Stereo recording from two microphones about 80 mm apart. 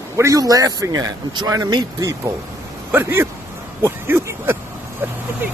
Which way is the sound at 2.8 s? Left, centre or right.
Right.